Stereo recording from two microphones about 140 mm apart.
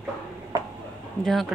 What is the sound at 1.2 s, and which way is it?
Speech, centre (ahead or behind).